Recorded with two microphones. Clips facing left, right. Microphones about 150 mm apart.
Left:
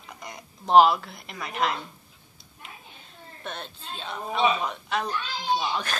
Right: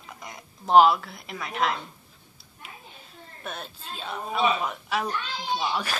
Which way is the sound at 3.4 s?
5° right (ahead or behind).